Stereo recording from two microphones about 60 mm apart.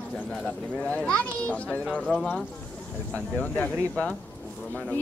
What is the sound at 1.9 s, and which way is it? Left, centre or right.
Speech, centre.